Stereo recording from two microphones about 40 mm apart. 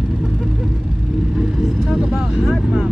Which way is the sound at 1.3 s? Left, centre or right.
Centre.